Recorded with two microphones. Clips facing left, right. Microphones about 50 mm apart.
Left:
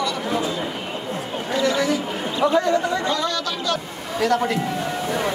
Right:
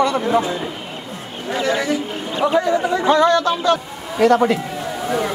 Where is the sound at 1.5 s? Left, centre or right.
Right.